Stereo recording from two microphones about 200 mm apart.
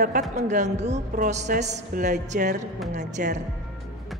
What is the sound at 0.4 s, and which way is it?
A woman's voice, 35° right (ahead or behind).